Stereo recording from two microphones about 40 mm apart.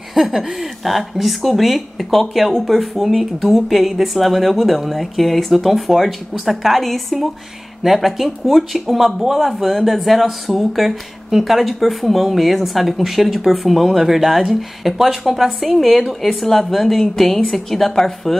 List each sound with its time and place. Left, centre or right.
0.1 s speech: centre